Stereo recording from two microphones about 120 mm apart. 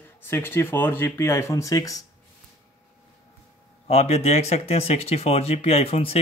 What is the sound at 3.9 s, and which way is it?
Speech, 60° left (ahead or behind).